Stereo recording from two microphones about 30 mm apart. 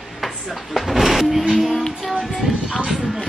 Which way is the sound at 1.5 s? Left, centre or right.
Centre.